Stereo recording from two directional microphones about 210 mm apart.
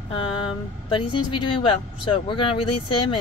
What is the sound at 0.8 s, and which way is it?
Speech, 25° left (ahead or behind).